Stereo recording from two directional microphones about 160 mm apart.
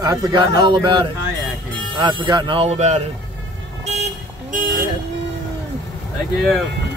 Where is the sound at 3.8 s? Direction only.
50° right (ahead or behind).